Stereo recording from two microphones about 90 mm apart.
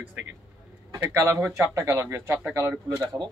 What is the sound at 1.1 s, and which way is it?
A man's voice, 30° right (ahead or behind).